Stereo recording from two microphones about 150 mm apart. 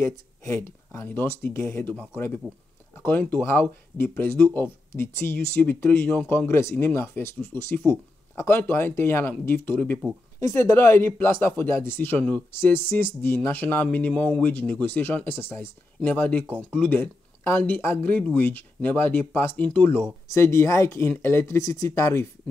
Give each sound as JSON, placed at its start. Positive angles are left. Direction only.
{"t": 0.0, "sound": "speech", "side_deg": 20}